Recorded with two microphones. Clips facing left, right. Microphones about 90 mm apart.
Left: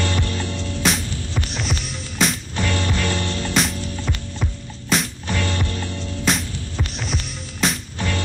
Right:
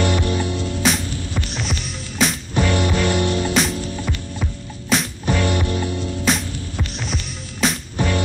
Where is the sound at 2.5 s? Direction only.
15° right (ahead or behind).